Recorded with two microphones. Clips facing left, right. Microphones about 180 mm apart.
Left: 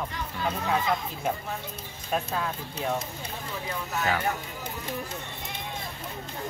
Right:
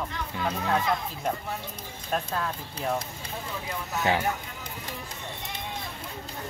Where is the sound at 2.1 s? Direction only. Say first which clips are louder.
Even; 5° left (ahead or behind).